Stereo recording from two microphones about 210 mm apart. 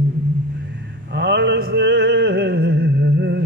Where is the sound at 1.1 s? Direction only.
55° right (ahead or behind).